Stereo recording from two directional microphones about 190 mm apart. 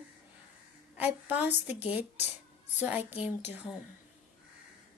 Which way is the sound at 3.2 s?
10° right (ahead or behind).